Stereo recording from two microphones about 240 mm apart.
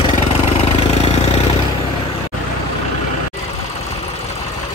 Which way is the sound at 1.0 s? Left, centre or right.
Left.